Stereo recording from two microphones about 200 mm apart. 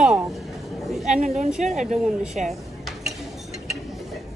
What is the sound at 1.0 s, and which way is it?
A woman's voice, 35° right (ahead or behind).